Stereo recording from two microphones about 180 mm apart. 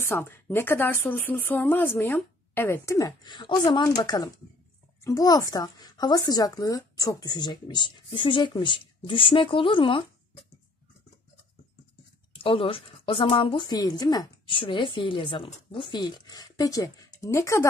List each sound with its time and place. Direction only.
0.0 s a woman's voice: 15° left (ahead or behind)
12.3 s a woman's voice: 30° left (ahead or behind)